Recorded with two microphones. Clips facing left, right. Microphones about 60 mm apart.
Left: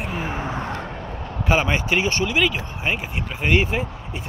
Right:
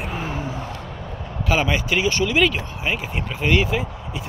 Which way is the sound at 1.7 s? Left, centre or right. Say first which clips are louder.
Even; left.